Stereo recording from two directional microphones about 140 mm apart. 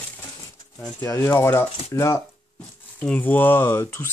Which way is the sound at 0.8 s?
15° left (ahead or behind).